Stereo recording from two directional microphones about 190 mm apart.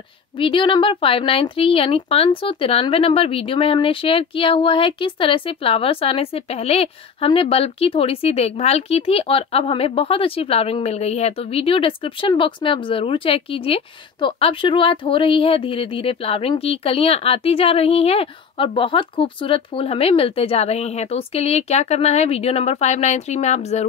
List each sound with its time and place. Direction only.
0.4 s speech: 25° left (ahead or behind)